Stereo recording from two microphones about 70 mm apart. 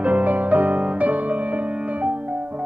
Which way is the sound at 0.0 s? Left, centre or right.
Right.